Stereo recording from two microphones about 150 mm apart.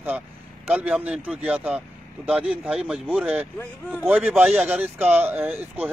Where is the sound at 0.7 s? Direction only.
10° right (ahead or behind).